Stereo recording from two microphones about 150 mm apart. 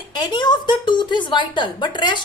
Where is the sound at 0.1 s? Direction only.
30° left (ahead or behind).